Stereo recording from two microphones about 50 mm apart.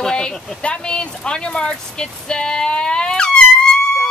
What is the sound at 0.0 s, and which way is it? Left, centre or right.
Speech, centre.